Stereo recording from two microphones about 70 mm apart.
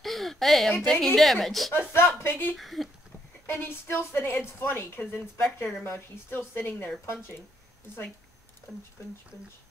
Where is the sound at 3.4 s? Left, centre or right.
Left.